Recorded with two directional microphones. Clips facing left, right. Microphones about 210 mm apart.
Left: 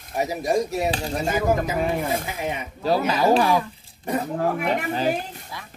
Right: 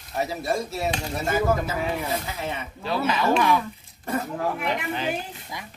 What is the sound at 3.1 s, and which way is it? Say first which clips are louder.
Speech: left 1 dB; 35° left (ahead or behind).